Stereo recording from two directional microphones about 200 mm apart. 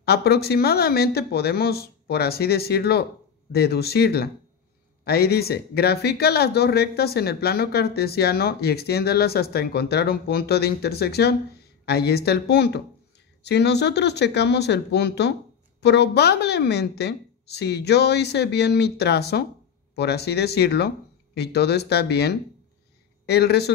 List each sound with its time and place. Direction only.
0.0 s a woman's voice: 55° left (ahead or behind)